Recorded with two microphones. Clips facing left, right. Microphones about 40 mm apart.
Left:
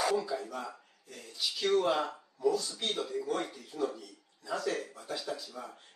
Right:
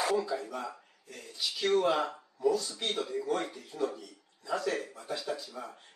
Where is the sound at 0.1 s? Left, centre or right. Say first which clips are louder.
Right 1 dB; centre.